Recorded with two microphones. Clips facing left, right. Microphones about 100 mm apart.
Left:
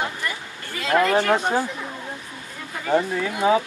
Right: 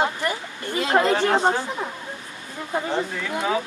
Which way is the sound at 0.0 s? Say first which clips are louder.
Right 4 dB; 25° right (ahead or behind).